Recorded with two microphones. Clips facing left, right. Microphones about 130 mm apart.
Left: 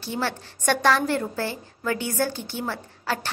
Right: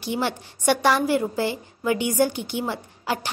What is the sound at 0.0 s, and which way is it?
A woman's voice, 15° right (ahead or behind).